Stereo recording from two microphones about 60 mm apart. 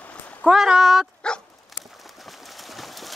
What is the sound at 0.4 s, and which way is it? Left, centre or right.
Speech, centre.